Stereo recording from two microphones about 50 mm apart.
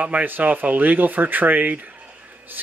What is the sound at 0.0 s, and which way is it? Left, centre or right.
Speech, right.